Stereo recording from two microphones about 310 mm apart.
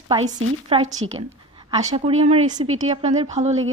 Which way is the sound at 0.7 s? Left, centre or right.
Centre.